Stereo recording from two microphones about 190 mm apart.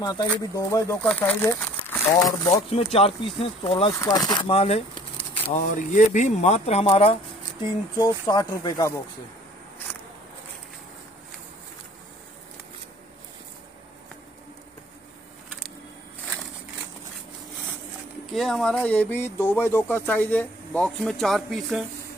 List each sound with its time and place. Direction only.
0.0 s speech: 20° left (ahead or behind)
2.5 s speech: 35° left (ahead or behind)
4.0 s speech: 20° left (ahead or behind)
8.0 s speech: 20° left (ahead or behind)
9.9 s a sound: 10° left (ahead or behind)
18.3 s speech: centre (ahead or behind)